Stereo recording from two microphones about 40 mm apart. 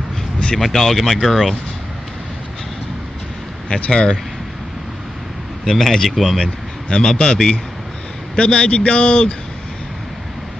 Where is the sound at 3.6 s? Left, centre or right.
Left.